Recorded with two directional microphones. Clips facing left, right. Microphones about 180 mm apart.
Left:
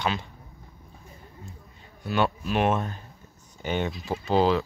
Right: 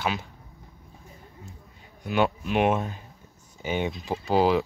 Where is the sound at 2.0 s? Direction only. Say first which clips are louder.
Right 1 dB; 15° right (ahead or behind).